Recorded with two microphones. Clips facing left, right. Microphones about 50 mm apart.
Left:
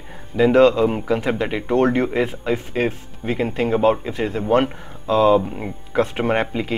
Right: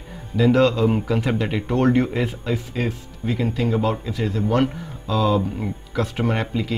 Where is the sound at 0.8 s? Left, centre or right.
Centre.